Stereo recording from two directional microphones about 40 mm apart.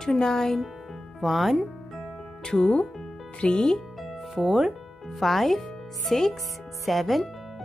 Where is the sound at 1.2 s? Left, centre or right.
Centre.